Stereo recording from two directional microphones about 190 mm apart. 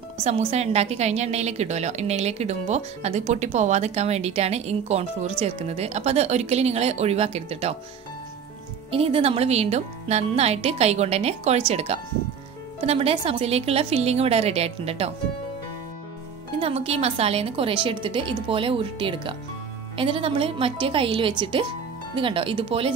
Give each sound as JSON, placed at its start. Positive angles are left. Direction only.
{"t": 0.2, "sound": "a woman's voice", "side_deg": -35}
{"t": 8.9, "sound": "a woman's voice", "side_deg": -30}
{"t": 16.5, "sound": "speech", "side_deg": -30}